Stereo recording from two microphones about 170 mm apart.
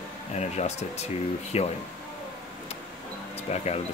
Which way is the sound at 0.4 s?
40° left (ahead or behind).